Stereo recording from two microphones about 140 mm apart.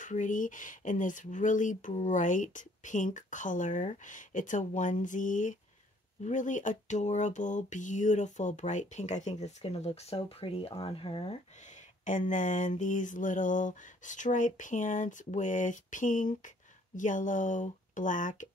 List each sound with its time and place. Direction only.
0.0 s mantra: 65° left (ahead or behind); by 11.3 s 40° left (ahead or behind)
12.0 s mantra: 65° left (ahead or behind)